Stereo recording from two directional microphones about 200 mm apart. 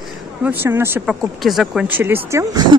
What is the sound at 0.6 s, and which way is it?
Speech, 10° right (ahead or behind).